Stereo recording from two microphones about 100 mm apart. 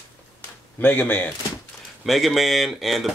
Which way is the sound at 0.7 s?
15° left (ahead or behind).